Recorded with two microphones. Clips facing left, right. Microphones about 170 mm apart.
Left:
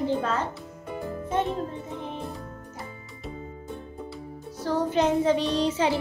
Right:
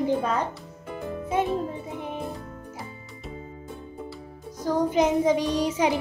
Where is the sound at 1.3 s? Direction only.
10° right (ahead or behind).